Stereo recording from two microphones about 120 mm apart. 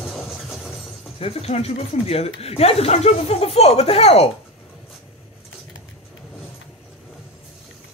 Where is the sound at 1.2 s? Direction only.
55° left (ahead or behind).